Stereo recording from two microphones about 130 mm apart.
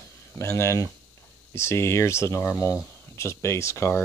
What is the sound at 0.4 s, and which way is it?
Speech, 20° left (ahead or behind).